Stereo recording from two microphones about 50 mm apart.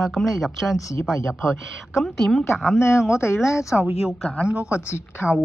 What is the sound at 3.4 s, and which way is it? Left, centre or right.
Speech, left.